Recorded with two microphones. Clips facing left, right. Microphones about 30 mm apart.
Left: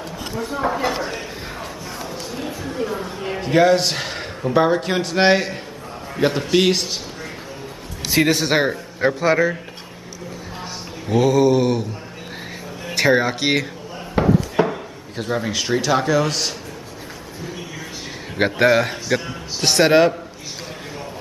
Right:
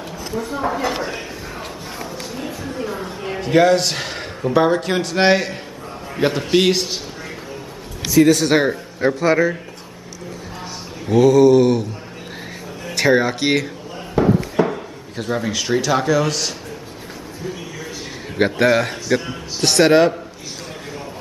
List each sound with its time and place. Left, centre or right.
0.5 s a man's voice: centre
2.3 s a man's voice: centre
8.4 s a man's voice: centre
11.1 s a man's voice: centre
12.8 s speech: centre
14.2 s chop: left
14.7 s speech: centre
18.3 s a man's voice: centre